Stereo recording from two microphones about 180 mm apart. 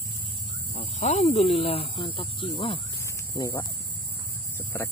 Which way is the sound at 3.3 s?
20° left (ahead or behind).